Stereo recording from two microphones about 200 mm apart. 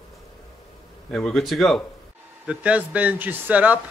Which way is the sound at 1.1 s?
Centre (ahead or behind).